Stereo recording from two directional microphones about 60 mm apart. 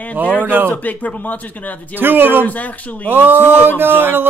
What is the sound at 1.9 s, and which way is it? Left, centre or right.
Speech, right.